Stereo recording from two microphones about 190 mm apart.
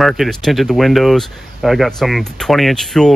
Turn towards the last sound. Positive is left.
turn(degrees=0)  # may be behind; listen again after turning